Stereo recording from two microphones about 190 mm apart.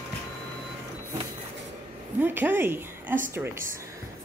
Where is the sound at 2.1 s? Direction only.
10° right (ahead or behind).